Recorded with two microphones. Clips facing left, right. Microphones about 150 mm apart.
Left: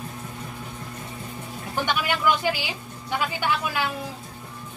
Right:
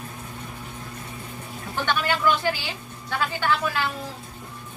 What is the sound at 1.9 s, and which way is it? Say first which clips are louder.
A woman's voice: right 1 dB; 15° left (ahead or behind).